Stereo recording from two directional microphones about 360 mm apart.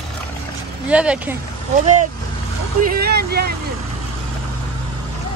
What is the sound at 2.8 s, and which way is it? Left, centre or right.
Vehicle, right.